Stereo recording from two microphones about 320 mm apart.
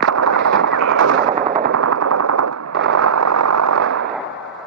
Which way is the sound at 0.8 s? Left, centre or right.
Right.